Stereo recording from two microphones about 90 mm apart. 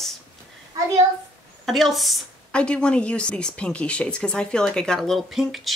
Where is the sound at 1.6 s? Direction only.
Centre (ahead or behind).